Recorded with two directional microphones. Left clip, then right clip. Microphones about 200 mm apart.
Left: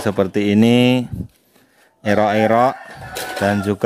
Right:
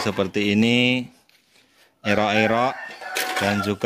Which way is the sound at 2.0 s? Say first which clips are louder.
Left 4 dB; 15° left (ahead or behind).